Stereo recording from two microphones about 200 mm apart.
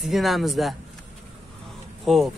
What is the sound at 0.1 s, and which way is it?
Speech, centre (ahead or behind).